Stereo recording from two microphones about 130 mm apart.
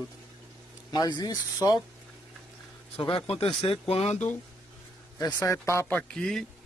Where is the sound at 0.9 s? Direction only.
30° left (ahead or behind).